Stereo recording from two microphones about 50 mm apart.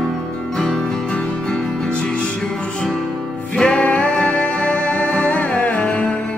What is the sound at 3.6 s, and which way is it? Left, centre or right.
Music, left.